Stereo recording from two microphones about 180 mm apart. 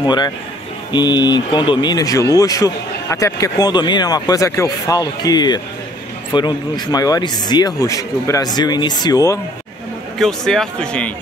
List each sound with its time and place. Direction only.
0.0 s speech: 25° left (ahead or behind)
10.1 s speech: centre (ahead or behind)